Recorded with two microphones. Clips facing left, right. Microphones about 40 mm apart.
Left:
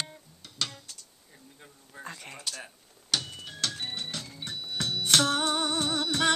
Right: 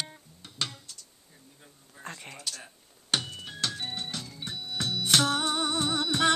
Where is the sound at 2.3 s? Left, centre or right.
Centre.